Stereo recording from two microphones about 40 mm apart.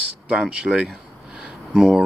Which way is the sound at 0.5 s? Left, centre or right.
Right.